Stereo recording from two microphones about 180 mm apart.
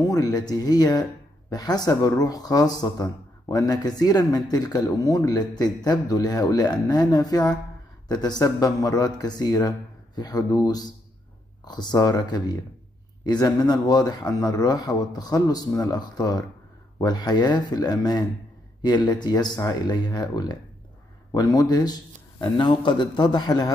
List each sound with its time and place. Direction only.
0.0 s speech: 20° left (ahead or behind)